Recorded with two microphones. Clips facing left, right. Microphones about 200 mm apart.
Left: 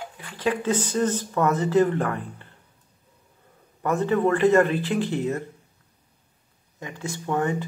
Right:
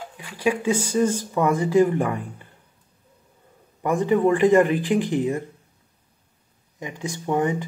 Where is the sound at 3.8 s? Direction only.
15° right (ahead or behind).